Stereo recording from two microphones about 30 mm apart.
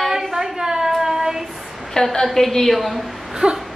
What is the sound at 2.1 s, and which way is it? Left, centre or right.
Speech, centre.